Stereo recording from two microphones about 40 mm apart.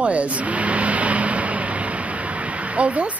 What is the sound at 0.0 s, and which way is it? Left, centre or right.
Vehicle, right.